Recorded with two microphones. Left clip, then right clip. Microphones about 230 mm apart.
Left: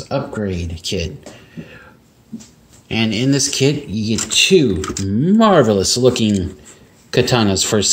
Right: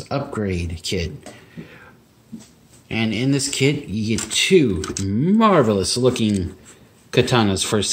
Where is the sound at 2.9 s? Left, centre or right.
Centre.